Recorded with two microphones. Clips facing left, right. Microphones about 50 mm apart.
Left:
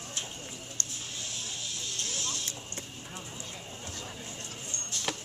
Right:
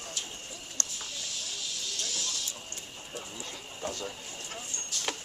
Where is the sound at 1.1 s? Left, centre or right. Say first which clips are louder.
Even; left.